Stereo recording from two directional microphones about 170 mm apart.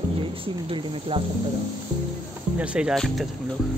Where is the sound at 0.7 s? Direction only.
30° right (ahead or behind).